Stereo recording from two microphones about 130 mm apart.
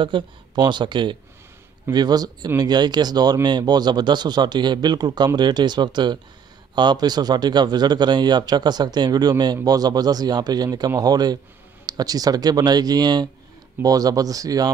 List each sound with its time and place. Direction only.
0.0 s a man's voice: 40° right (ahead or behind)